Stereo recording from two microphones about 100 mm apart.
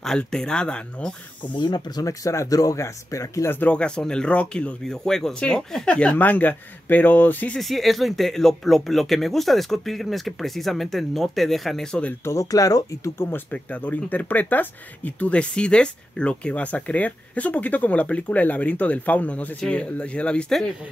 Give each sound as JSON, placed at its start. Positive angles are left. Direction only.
{"t": 0.0, "sound": "speech", "side_deg": 5}
{"t": 1.4, "sound": "speech", "side_deg": 50}
{"t": 3.5, "sound": "speech", "side_deg": 10}
{"t": 7.5, "sound": "speech", "side_deg": 0}
{"t": 12.1, "sound": "speech", "side_deg": 30}
{"t": 13.2, "sound": "speech", "side_deg": 20}